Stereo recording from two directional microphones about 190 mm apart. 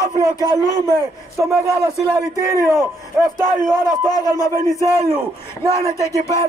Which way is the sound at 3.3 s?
20° left (ahead or behind).